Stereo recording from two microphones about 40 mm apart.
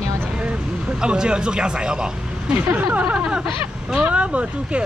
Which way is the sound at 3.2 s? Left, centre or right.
Centre.